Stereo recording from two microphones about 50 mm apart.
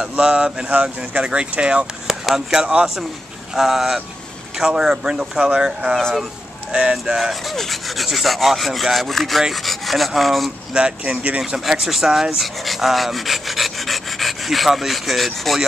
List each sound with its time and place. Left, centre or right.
0.2 s speech: centre
2.0 s speech: centre
3.5 s rub: centre
4.6 s speech: centre
7.2 s rub: centre
10.7 s speech: centre